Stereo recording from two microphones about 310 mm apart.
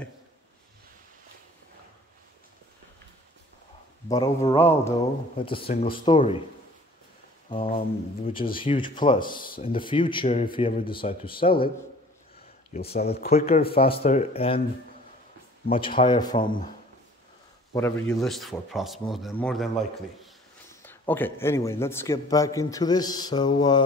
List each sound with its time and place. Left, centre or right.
4.1 s a man's voice: centre
7.4 s a man's voice: centre
12.7 s speech: left
15.9 s a man's voice: centre
16.4 s speech: left
17.7 s a man's voice: centre
20.8 s a man's voice: centre